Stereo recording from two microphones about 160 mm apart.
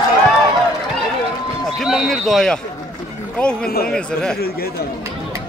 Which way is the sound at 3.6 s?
70° left (ahead or behind).